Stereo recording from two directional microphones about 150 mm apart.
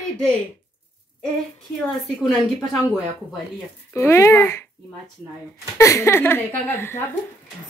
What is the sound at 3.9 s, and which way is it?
Speech, 20° left (ahead or behind).